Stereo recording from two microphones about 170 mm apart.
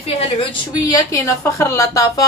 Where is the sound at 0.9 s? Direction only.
15° left (ahead or behind).